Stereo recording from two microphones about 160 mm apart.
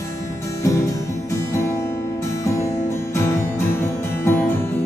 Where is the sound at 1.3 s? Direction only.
20° left (ahead or behind).